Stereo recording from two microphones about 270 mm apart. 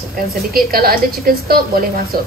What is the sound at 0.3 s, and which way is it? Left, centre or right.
A woman's voice, right.